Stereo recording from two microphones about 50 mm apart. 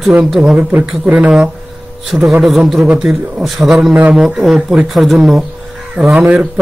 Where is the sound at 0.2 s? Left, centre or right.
Centre.